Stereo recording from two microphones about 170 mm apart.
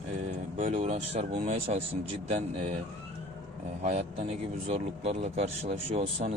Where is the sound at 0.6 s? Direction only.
40° right (ahead or behind).